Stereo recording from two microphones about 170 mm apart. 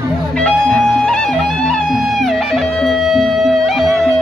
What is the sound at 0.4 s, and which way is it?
Music, 5° left (ahead or behind).